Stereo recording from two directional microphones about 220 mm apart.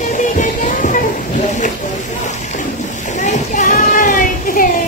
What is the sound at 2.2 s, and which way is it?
Splash, 35° left (ahead or behind).